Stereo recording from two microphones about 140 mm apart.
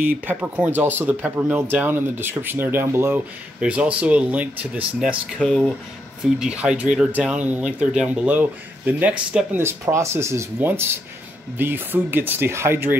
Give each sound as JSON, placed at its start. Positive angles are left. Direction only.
{"t": 0.0, "sound": "speech", "side_deg": -15}
{"t": 5.4, "sound": "speech", "side_deg": 5}
{"t": 9.6, "sound": "speech", "side_deg": -20}